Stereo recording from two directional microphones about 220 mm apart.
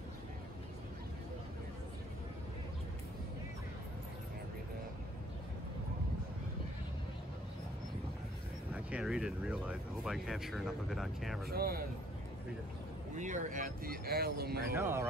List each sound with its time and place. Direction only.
8.7 s speech: 5° right (ahead or behind)
11.4 s speech: 45° right (ahead or behind)
13.2 s speech: 35° right (ahead or behind)
14.7 s speech: 10° right (ahead or behind)